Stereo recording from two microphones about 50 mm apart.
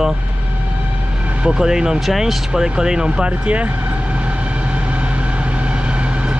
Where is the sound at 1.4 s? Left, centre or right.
Centre.